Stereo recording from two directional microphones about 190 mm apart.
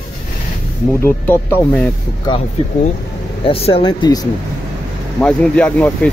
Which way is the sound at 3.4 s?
30° left (ahead or behind).